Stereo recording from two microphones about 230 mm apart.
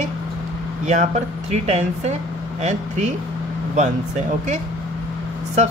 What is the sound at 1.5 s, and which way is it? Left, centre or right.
A woman's voice, right.